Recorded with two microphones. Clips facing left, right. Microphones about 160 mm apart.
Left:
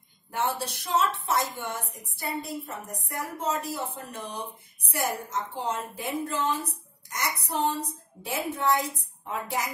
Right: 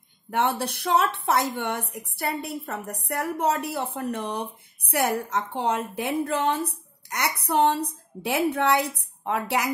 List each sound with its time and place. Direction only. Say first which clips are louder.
0.3 s a woman's voice: right 5 dB; 65° right (ahead or behind)